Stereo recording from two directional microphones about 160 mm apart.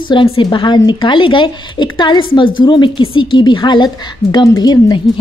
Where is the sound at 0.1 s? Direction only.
30° left (ahead or behind).